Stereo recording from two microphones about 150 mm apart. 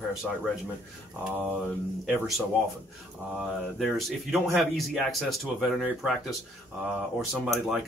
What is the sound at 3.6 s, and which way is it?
Speech, centre (ahead or behind).